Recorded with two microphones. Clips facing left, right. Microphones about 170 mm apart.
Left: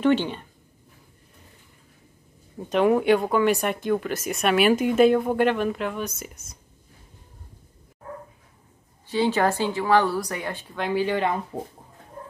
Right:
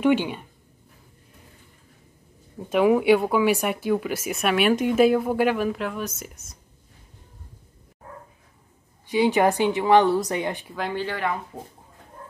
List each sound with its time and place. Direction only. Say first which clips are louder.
0.0 s speech: even; 10° right (ahead or behind)
2.7 s speech: right 1 dB; 5° right (ahead or behind)
9.0 s speech: right 2 dB; 15° right (ahead or behind)
10.7 s speech: left 2 dB; centre (ahead or behind)
11.0 s speech: left 5 dB; 20° left (ahead or behind)